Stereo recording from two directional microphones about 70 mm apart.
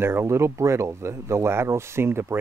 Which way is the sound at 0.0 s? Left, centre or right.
Right.